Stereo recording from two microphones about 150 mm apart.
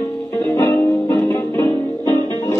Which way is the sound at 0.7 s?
25° left (ahead or behind).